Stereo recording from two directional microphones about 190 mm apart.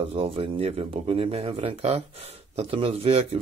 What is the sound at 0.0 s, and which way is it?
Speech, 30° right (ahead or behind).